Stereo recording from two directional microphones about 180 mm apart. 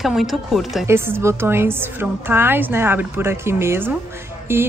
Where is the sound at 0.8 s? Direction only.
15° right (ahead or behind).